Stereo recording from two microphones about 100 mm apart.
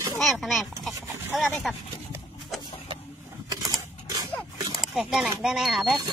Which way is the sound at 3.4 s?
45° right (ahead or behind).